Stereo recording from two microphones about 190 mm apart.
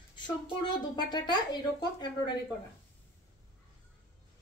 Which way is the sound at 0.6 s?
25° left (ahead or behind).